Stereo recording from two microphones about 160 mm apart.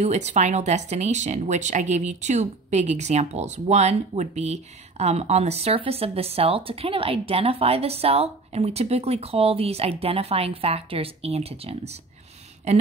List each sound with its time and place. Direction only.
0.0 s speech: 45° right (ahead or behind)